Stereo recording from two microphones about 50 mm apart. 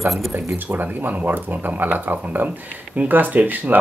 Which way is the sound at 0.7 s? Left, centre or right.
Right.